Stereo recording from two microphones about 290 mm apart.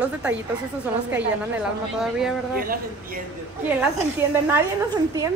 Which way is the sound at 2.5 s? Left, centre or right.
Right.